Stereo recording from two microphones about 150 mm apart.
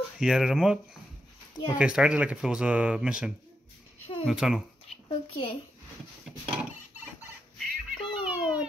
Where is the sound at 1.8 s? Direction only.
5° right (ahead or behind).